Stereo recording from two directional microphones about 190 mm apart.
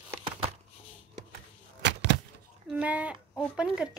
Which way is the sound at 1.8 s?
65° right (ahead or behind).